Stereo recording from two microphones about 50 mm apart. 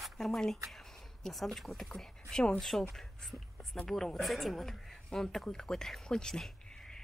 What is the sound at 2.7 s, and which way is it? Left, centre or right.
Speech, centre.